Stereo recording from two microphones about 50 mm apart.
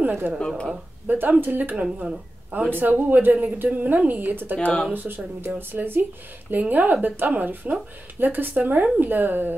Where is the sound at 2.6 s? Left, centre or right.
Right.